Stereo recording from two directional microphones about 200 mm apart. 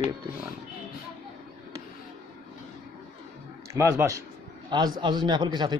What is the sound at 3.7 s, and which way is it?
A man's voice, 15° right (ahead or behind).